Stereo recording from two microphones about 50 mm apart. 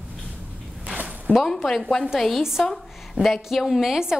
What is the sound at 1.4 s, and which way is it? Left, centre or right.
A woman's voice, centre.